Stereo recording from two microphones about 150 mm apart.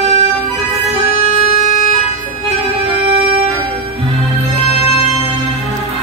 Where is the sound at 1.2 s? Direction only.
45° right (ahead or behind).